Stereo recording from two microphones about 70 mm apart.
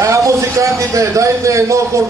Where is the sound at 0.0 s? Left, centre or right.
Right.